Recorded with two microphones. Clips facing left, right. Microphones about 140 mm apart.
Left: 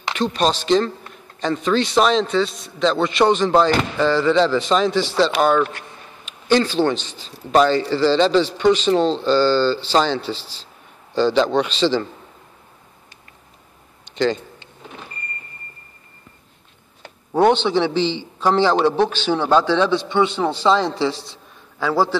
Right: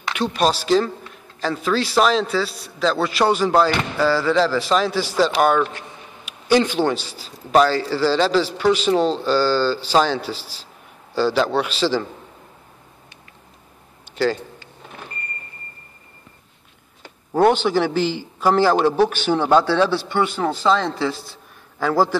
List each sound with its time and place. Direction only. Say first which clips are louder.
0.1 s a man's voice: even; 10° right (ahead or behind)
14.0 s a sound: left 1 dB; 5° right (ahead or behind)
17.3 s a man's voice: even; 5° right (ahead or behind)
20.1 s a man's voice: left 2 dB; 25° left (ahead or behind)
21.7 s a man's voice: right 1 dB; 15° right (ahead or behind)